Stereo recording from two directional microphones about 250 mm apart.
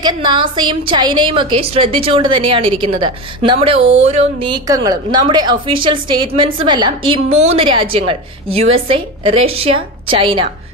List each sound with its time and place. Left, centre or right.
0.0 s a woman's voice: centre